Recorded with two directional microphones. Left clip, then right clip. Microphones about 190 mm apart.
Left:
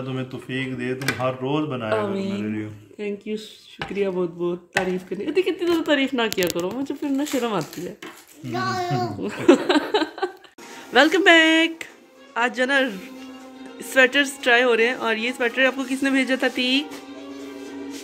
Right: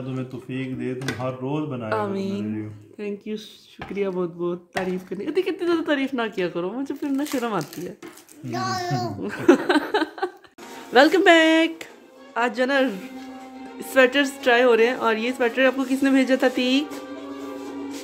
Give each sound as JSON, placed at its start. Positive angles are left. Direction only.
{"t": 0.0, "sound": "speech", "side_deg": 0}
{"t": 8.5, "sound": "a child's voice", "side_deg": -45}
{"t": 9.2, "sound": "a sound", "side_deg": 5}
{"t": 10.9, "sound": "speech", "side_deg": -5}